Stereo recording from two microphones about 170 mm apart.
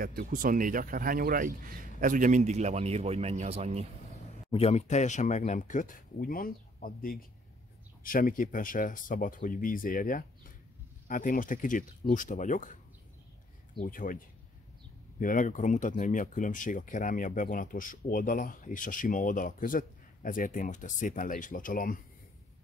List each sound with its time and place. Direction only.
0.0 s speech: 55° right (ahead or behind); by 3.8 s 35° right (ahead or behind)
4.5 s speech: 35° left (ahead or behind)
13.7 s speech: 55° left (ahead or behind)